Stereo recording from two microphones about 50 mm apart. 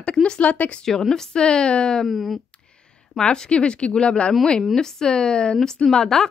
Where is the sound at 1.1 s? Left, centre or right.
Centre.